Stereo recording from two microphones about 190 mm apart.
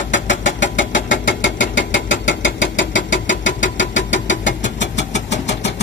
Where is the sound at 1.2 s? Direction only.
75° left (ahead or behind).